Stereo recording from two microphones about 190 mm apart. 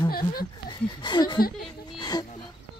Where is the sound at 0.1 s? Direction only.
50° left (ahead or behind).